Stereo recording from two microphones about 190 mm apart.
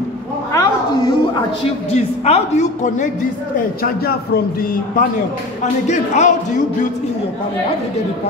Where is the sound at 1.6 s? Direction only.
35° left (ahead or behind).